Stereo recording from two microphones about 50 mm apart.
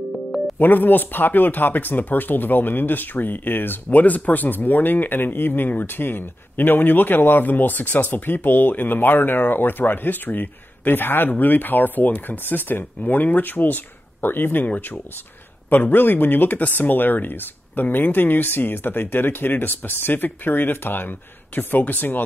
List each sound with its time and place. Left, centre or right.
0.6 s speech: left